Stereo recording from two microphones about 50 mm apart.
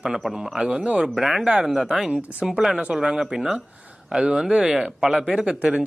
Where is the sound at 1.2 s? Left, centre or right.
Centre.